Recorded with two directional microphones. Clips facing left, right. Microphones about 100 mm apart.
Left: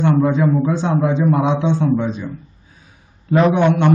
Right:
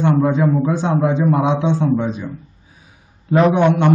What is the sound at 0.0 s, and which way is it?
A man's voice, 15° right (ahead or behind).